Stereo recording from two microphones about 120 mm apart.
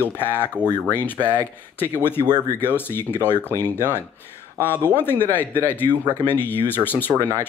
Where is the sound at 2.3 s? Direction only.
35° right (ahead or behind).